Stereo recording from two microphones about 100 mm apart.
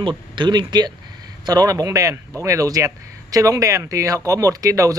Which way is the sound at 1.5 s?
35° right (ahead or behind).